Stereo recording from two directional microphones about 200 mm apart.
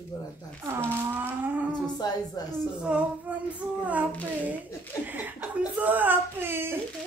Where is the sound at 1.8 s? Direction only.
20° left (ahead or behind).